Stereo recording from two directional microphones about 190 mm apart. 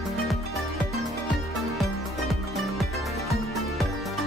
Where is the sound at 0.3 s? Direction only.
Centre (ahead or behind).